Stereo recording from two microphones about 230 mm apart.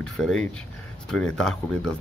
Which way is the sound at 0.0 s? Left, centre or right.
Centre.